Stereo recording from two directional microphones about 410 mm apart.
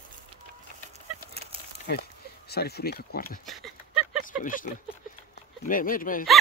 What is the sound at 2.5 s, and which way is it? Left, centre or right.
Speech, left.